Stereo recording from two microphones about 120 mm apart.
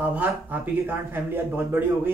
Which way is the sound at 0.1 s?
15° right (ahead or behind).